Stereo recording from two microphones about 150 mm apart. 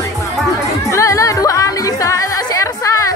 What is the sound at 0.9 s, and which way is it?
Music, 20° left (ahead or behind).